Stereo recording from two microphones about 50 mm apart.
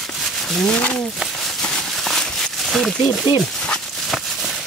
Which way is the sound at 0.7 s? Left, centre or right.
Left.